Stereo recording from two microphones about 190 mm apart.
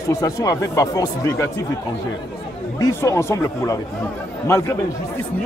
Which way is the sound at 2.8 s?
15° left (ahead or behind).